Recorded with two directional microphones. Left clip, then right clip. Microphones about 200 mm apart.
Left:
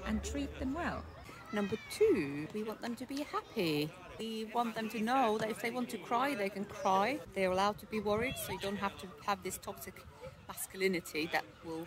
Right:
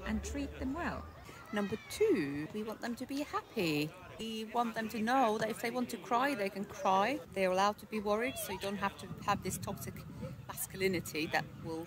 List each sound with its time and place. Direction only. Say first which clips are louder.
0.0 s a woman's voice: left 1 dB; 5° left (ahead or behind)
1.5 s a woman's voice: even; 20° right (ahead or behind)